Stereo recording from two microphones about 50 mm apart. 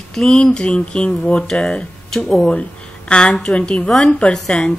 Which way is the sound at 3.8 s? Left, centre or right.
Centre.